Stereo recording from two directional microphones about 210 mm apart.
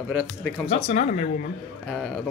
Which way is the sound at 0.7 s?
35° left (ahead or behind).